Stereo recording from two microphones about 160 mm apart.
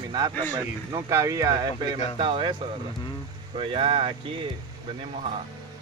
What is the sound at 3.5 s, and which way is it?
Speech, 35° right (ahead or behind).